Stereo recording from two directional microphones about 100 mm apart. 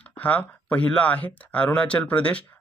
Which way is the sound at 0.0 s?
15° left (ahead or behind).